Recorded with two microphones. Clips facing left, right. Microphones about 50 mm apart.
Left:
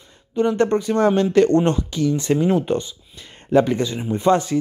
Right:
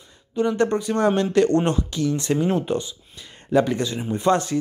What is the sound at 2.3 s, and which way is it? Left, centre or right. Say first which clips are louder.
Speech: left 3 dB; centre.